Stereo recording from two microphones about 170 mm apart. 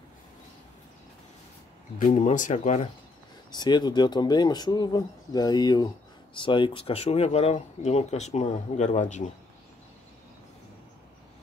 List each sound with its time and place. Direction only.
2.0 s speech: 45° left (ahead or behind)
3.5 s speech: 25° left (ahead or behind); by 9.2 s 45° left (ahead or behind)